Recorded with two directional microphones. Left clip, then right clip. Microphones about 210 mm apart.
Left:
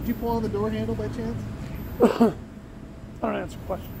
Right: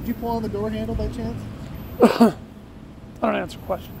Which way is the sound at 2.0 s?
35° right (ahead or behind).